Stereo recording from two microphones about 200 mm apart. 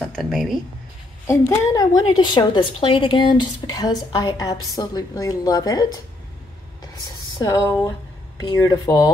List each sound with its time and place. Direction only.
0.1 s speech: centre (ahead or behind)
1.2 s a woman's voice: 15° left (ahead or behind)
7.3 s a woman's voice: 20° left (ahead or behind)